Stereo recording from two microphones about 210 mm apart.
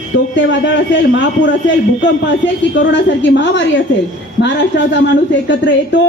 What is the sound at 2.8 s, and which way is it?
Speech, 60° left (ahead or behind).